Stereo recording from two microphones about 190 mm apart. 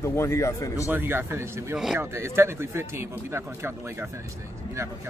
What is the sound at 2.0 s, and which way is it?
A man's voice, 15° right (ahead or behind).